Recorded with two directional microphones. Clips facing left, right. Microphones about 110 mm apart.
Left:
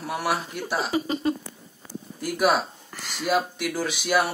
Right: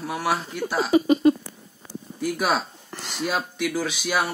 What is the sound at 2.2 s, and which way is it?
Speech, 5° left (ahead or behind).